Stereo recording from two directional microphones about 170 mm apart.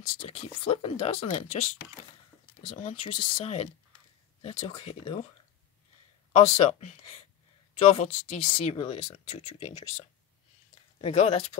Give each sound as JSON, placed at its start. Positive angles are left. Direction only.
{"t": 0.4, "sound": "speech", "side_deg": 40}
{"t": 2.8, "sound": "speech", "side_deg": 45}
{"t": 6.3, "sound": "speech", "side_deg": 40}
{"t": 11.0, "sound": "speech", "side_deg": 40}